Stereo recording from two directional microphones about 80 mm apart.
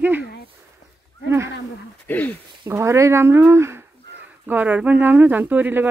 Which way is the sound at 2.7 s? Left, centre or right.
Right.